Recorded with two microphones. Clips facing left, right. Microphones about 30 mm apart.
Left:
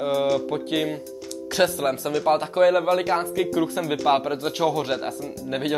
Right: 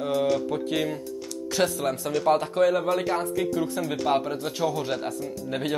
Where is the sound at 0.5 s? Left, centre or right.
Centre.